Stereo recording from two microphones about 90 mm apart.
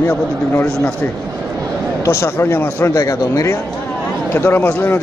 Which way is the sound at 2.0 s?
30° left (ahead or behind).